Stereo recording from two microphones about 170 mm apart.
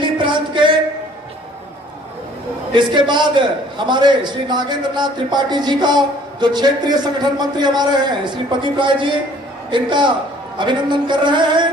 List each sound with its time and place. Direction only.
0.0 s music: 30° right (ahead or behind)
2.7 s a man's voice: 25° right (ahead or behind)